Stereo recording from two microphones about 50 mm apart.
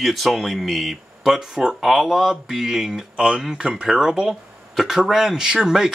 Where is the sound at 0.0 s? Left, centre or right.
Centre.